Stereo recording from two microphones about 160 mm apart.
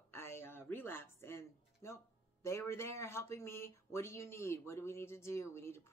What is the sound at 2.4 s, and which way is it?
Speech, 15° left (ahead or behind).